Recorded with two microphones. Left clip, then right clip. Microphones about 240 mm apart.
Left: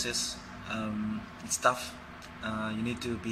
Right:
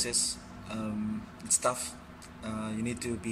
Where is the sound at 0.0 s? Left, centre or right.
Right.